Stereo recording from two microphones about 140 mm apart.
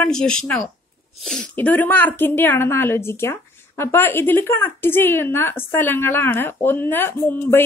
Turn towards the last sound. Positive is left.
turn(degrees=15)  # may be behind; listen again after turning